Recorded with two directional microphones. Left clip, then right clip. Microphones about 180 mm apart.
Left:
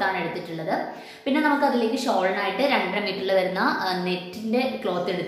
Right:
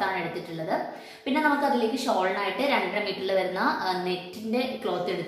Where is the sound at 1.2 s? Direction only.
15° left (ahead or behind).